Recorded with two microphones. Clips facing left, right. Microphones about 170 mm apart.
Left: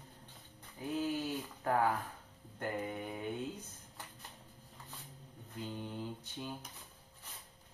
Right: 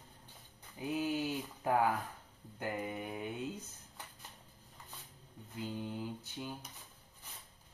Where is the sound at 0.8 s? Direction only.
10° right (ahead or behind).